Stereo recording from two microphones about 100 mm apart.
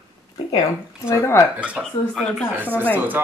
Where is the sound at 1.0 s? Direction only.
25° left (ahead or behind).